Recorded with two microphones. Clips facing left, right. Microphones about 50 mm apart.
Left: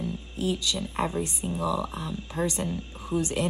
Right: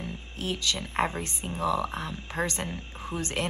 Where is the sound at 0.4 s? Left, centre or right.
Right.